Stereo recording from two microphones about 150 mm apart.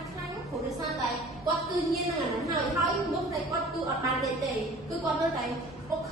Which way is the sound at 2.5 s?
20° right (ahead or behind).